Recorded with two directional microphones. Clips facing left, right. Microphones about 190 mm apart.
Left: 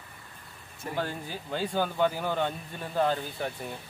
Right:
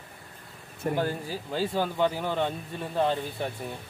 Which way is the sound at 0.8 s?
55° right (ahead or behind).